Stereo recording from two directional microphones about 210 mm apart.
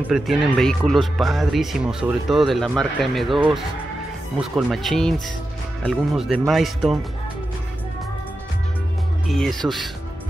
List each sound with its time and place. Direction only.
0.1 s speech: centre (ahead or behind)
4.4 s speech: 5° right (ahead or behind)
9.3 s speech: centre (ahead or behind)